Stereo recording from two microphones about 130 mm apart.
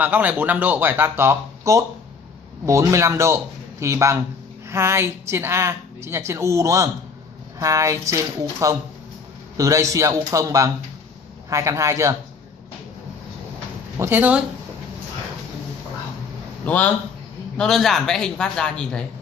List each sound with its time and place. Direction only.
0.0 s a woman's voice: 15° right (ahead or behind)
13.9 s speech: 15° right (ahead or behind)
16.6 s a man's voice: 10° left (ahead or behind)